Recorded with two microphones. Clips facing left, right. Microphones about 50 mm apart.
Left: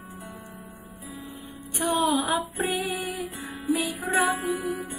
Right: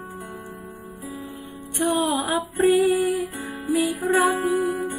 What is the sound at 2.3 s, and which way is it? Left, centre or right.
Female singing, centre.